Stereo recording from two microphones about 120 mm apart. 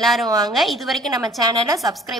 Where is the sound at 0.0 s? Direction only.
Centre (ahead or behind).